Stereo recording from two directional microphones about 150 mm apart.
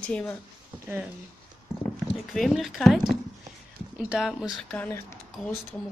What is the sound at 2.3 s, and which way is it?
Speech, centre (ahead or behind).